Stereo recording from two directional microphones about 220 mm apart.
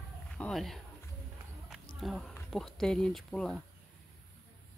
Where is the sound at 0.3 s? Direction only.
5° left (ahead or behind).